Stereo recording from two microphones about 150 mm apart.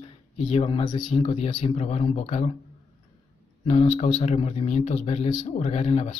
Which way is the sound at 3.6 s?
40° left (ahead or behind).